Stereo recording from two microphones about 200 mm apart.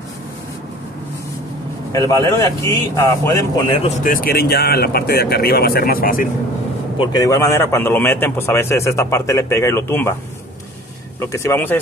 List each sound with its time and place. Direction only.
1.9 s a man's voice: 15° left (ahead or behind)
4.0 s speech: 45° left (ahead or behind)
7.0 s a man's voice: 20° left (ahead or behind)
11.1 s a man's voice: 15° left (ahead or behind)